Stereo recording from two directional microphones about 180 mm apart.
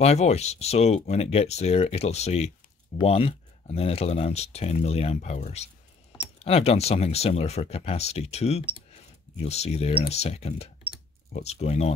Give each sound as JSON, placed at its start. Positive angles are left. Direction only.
{"t": 0.0, "sound": "speech", "side_deg": 35}